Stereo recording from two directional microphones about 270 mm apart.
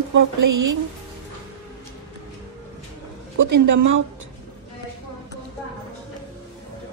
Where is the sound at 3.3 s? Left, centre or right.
Right.